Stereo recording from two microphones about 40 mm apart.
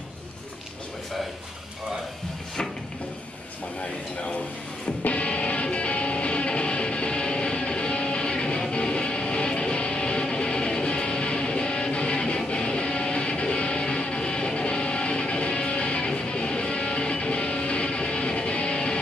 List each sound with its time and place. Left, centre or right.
5.0 s music: left